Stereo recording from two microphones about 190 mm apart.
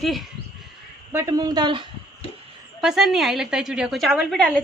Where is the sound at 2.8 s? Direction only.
Centre (ahead or behind).